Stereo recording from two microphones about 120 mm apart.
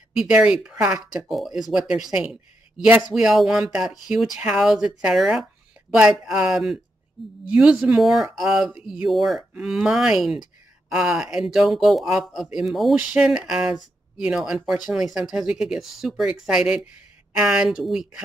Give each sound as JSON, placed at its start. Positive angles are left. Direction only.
{"t": 0.2, "sound": "speech", "side_deg": -5}